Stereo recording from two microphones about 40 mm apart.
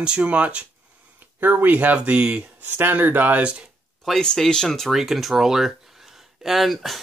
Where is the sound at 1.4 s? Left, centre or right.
Right.